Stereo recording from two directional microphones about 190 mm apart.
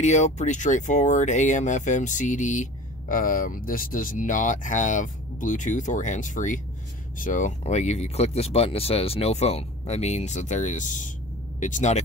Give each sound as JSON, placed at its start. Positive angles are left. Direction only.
{"t": 0.0, "sound": "speech", "side_deg": 40}